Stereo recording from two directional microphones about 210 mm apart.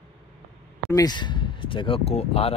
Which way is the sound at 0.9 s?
20° left (ahead or behind).